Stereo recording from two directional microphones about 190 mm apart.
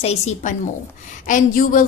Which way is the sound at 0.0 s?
35° left (ahead or behind).